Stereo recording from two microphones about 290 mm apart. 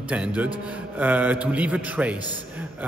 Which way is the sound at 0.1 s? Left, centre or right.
Centre.